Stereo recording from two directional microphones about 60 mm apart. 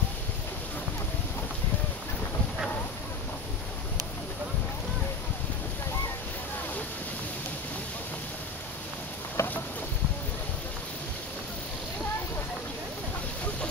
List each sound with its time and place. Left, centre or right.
9.4 s boat: left